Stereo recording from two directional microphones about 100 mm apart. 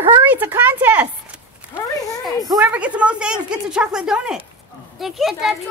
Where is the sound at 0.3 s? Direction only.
20° right (ahead or behind).